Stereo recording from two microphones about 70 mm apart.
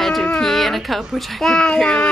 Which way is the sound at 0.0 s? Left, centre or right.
Centre.